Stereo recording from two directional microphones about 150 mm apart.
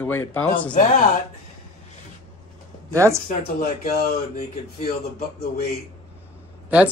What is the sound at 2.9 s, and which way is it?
Speech, 20° right (ahead or behind).